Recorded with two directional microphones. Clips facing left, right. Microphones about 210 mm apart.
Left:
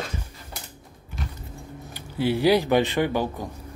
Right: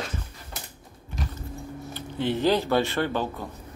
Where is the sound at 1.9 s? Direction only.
10° left (ahead or behind).